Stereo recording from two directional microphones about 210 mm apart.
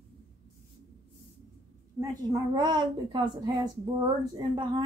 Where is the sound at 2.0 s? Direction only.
15° right (ahead or behind).